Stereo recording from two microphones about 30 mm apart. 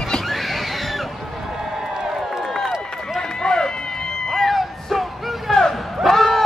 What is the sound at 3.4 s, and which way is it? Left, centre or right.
Run, left.